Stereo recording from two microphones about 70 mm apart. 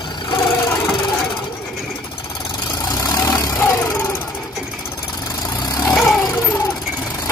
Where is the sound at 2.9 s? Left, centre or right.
Left.